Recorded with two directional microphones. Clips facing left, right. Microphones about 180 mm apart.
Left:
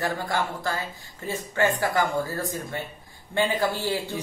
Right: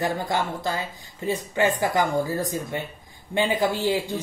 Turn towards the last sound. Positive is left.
turn(degrees=-15)  # may be behind; listen again after turning